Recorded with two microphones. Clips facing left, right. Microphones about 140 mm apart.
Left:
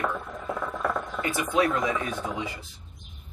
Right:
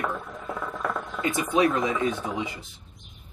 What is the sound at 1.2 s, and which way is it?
Speech, 20° right (ahead or behind).